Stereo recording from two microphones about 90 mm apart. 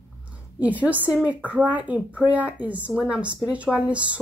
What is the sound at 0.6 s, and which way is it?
Speech, 15° right (ahead or behind).